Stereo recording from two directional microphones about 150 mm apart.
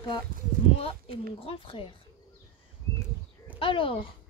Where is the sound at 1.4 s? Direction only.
40° left (ahead or behind).